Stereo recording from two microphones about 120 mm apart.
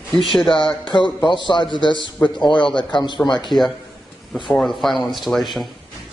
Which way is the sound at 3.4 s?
Centre (ahead or behind).